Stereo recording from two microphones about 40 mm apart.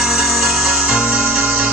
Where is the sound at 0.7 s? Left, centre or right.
Right.